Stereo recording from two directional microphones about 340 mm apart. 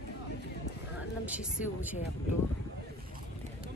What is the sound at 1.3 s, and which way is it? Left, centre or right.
Speech, centre.